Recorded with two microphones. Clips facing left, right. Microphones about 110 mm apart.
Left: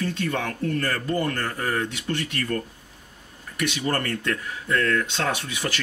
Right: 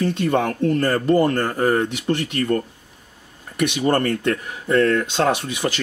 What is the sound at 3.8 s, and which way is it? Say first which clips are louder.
Speech: right 10 dB; 25° right (ahead or behind).